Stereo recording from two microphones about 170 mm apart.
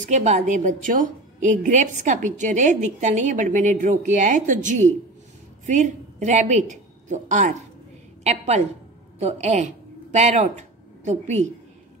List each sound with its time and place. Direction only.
0.0 s a woman's voice: 45° right (ahead or behind)